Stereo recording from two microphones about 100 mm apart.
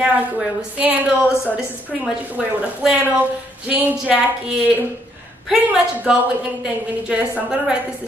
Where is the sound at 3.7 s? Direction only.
15° right (ahead or behind).